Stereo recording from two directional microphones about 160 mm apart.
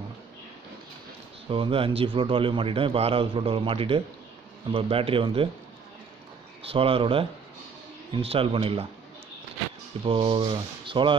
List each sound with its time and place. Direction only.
1.5 s a man's voice: 35° right (ahead or behind)
6.6 s a man's voice: 35° right (ahead or behind)
10.0 s a man's voice: 35° right (ahead or behind)